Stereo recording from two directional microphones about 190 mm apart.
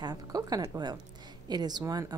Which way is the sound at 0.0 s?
20° right (ahead or behind).